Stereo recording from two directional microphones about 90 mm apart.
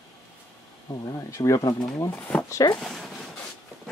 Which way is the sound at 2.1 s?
15° left (ahead or behind).